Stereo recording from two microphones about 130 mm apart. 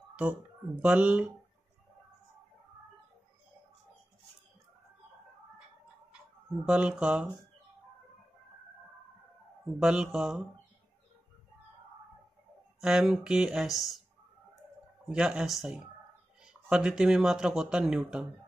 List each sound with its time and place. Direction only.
0.1 s speech: 10° right (ahead or behind)
6.1 s speech: 10° right (ahead or behind)
9.8 s speech: 5° right (ahead or behind)
12.8 s speech: 5° right (ahead or behind)
15.0 s speech: 5° right (ahead or behind)